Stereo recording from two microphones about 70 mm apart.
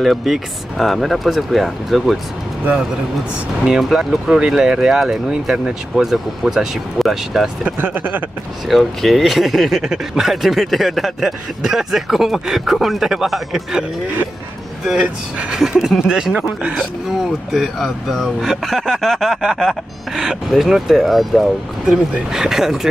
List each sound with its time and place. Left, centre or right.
0.0 s speech: centre
3.6 s speech: centre
7.6 s speech: right
8.6 s speech: centre
15.5 s speech: centre